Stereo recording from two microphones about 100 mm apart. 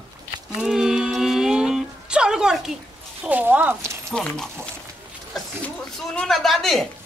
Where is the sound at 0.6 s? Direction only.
5° right (ahead or behind).